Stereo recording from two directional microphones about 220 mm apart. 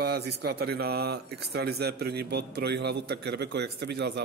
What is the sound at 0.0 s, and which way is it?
Speech, 50° right (ahead or behind).